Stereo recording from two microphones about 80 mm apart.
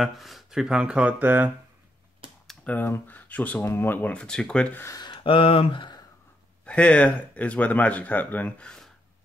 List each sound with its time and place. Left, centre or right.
0.0 s speech: centre; by 1.5 s right
2.2 s computer keyboard: right
2.6 s speech: left
4.9 s speech: left
6.6 s speech: centre